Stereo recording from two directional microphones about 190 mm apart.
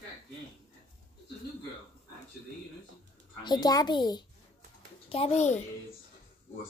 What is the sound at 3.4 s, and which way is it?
A child's voice, 20° left (ahead or behind).